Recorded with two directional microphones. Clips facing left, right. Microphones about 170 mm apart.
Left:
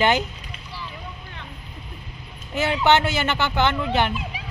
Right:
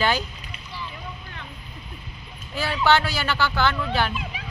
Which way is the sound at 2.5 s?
20° left (ahead or behind).